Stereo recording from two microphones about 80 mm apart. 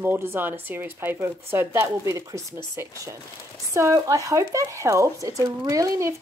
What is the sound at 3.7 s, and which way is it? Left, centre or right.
Speech, right.